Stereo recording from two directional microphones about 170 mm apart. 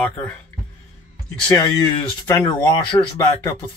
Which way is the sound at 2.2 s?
20° left (ahead or behind).